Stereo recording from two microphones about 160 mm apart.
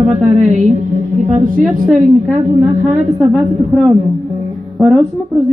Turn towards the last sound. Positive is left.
turn(degrees=0)  # may be behind; listen again after turning